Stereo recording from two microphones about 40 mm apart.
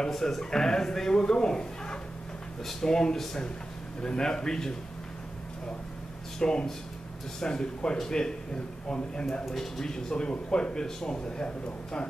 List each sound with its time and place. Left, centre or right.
0.2 s speech: centre
6.4 s speech: centre
9.5 s speech: centre